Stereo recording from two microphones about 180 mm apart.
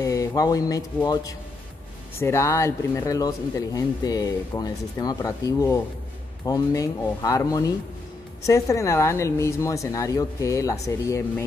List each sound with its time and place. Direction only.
0.0 s speech: 20° left (ahead or behind)